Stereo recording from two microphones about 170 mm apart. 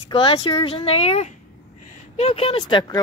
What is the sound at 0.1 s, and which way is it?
Speech, 30° left (ahead or behind).